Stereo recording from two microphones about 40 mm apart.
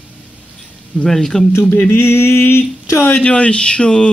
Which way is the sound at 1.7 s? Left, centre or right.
Left.